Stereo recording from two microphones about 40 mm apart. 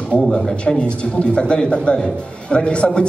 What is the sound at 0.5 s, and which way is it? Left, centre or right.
A man's voice, left.